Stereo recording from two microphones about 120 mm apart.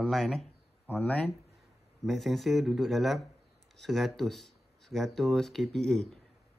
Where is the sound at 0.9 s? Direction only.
15° left (ahead or behind).